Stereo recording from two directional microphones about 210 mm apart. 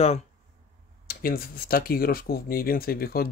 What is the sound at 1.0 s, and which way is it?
Speech, 45° left (ahead or behind).